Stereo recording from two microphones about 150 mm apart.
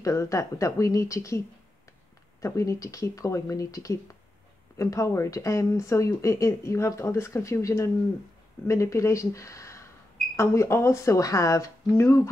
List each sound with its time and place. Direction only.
0.0 s speech: 20° left (ahead or behind)
2.4 s speech: 20° left (ahead or behind)